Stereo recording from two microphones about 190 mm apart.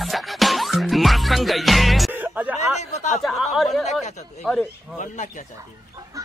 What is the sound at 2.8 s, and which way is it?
Speech, 35° left (ahead or behind).